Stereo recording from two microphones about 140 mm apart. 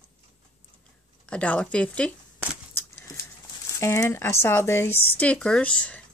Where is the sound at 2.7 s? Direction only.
20° left (ahead or behind).